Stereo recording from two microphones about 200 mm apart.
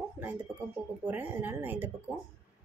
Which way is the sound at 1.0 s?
10° right (ahead or behind).